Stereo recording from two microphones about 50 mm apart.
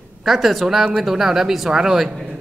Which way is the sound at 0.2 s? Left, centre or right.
Centre.